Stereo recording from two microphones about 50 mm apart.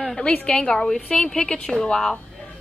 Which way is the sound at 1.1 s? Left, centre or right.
Centre.